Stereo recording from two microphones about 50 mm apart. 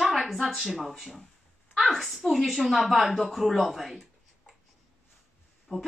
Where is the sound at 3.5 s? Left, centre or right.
Centre.